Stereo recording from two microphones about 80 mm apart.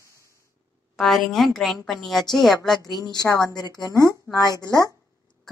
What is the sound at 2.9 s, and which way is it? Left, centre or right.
Speech, left.